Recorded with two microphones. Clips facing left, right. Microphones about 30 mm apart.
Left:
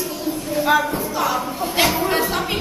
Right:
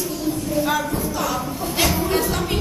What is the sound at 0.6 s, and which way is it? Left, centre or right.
A man's voice, centre.